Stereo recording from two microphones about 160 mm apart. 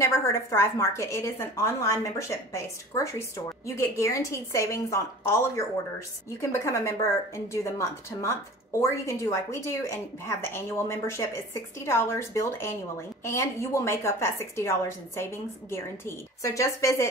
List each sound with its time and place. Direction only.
0.0 s speech: 15° left (ahead or behind)